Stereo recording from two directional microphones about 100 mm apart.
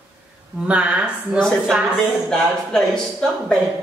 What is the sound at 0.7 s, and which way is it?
Speech, 10° right (ahead or behind).